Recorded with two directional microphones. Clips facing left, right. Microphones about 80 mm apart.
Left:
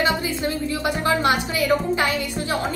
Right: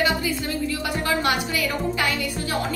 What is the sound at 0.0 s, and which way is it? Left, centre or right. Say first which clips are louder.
Speech: left 1 dB; left.